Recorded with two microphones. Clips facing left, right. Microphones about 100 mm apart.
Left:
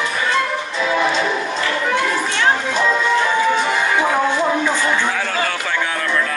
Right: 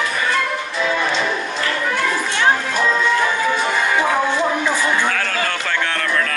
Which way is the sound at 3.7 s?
15° left (ahead or behind).